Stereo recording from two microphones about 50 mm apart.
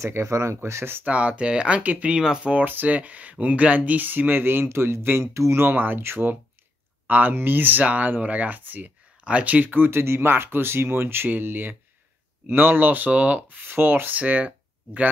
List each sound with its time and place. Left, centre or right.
0.0 s speech: right
1.0 s speech: right
2.5 s speech: right
4.6 s speech: right
5.3 s speech: right
5.6 s speech: right
9.2 s speech: right
9.8 s speech: right
13.5 s speech: right
14.1 s speech: right